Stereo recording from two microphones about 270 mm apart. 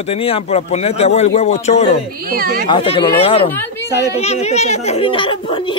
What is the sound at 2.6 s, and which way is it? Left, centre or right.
Speech, centre.